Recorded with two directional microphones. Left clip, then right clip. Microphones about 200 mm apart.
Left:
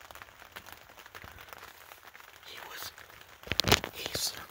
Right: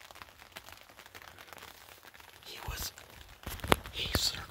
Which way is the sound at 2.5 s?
25° right (ahead or behind).